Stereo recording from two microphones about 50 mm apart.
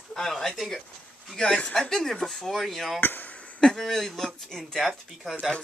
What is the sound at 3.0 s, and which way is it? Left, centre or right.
Speech, left.